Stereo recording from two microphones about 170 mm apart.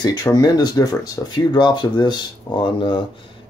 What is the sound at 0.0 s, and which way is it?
Speech, 25° left (ahead or behind).